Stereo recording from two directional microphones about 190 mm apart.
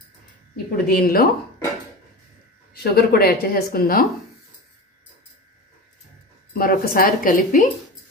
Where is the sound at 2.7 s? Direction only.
55° left (ahead or behind).